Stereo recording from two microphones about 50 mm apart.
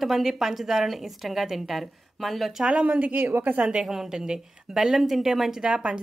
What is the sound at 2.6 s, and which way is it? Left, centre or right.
Speech, right.